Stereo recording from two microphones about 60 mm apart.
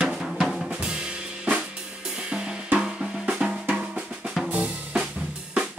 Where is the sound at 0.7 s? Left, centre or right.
Centre.